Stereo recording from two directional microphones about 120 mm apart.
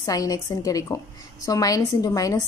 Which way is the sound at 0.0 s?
30° left (ahead or behind).